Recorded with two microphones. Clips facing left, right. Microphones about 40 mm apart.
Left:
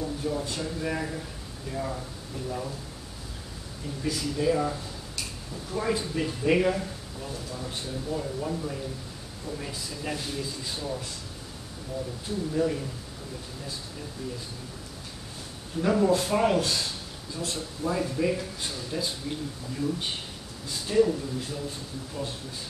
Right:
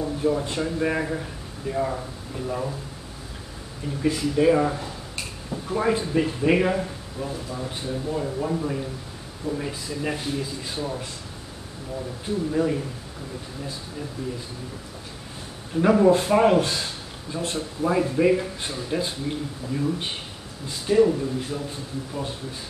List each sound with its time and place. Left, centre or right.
0.0 s a man's voice: right
4.0 s speech: right
12.3 s speech: centre
15.8 s speech: right